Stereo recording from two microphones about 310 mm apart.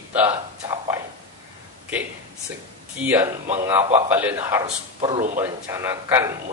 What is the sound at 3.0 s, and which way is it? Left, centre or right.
A man's voice, centre.